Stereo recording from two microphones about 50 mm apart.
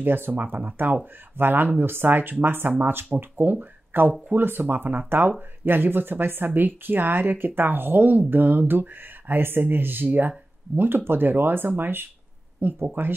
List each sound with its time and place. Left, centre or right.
0.0 s speech: right